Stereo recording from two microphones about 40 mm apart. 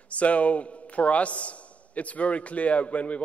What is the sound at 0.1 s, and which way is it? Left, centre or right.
A man's voice, left.